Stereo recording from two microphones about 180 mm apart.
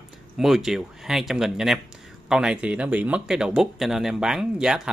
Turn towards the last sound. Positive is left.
turn(degrees=-5)  # may be behind; listen again after turning